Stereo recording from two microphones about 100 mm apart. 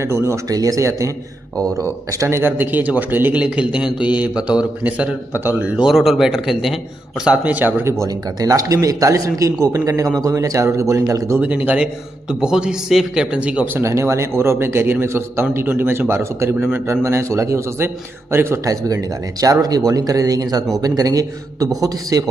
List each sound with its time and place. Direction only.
0.0 s a man's voice: 30° right (ahead or behind); by 6.8 s 5° right (ahead or behind)
7.2 s a man's voice: 15° right (ahead or behind)
8.0 s speech: 35° right (ahead or behind)
11.4 s a man's voice: 15° right (ahead or behind)
13.8 s a man's voice: 30° right (ahead or behind)
19.4 s speech: 40° right (ahead or behind)